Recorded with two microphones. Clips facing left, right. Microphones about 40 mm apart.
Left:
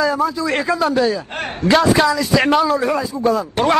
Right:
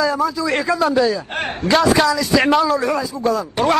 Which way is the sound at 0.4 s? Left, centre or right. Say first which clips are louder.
Even; centre.